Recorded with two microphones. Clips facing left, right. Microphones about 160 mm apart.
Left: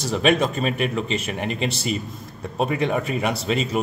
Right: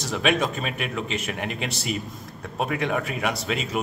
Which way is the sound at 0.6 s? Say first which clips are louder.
Left 6 dB; 35° left (ahead or behind).